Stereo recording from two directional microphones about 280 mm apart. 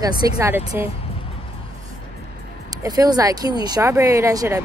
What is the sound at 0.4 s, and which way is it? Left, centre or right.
Speech, centre.